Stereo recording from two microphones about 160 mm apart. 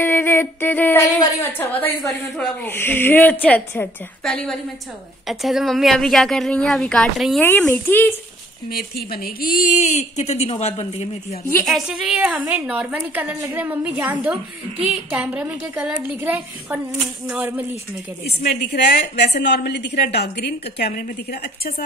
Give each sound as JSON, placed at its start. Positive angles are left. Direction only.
{"t": 0.0, "sound": "a sound", "side_deg": 15}
{"t": 1.2, "sound": "a woman's voice", "side_deg": 15}
{"t": 7.4, "sound": "speech", "side_deg": 15}
{"t": 8.7, "sound": "speech", "side_deg": 75}
{"t": 9.8, "sound": "speech", "side_deg": 45}
{"t": 11.6, "sound": "a woman's voice", "side_deg": 0}
{"t": 18.2, "sound": "a woman's voice", "side_deg": 85}